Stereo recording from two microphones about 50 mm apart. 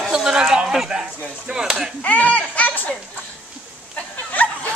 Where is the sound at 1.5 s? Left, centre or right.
Centre.